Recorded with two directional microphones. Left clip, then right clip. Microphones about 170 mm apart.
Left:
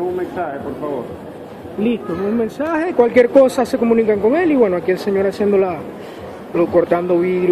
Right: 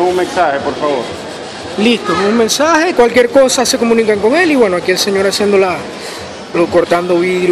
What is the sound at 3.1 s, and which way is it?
Speech, 5° right (ahead or behind).